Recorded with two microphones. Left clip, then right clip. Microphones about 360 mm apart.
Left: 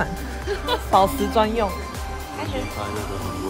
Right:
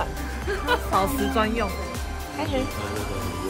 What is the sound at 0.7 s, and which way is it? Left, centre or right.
Speech, left.